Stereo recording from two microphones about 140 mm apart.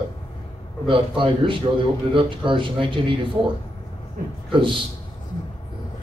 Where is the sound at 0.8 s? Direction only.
35° right (ahead or behind).